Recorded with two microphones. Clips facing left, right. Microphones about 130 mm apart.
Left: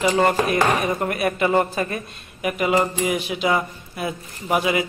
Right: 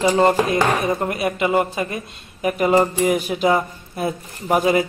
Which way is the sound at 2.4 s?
40° right (ahead or behind).